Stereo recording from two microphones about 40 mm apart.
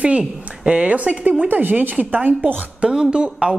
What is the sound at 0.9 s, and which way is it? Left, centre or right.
Speech, right.